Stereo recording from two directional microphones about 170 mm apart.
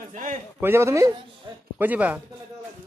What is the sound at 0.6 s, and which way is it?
A man's voice, 15° right (ahead or behind).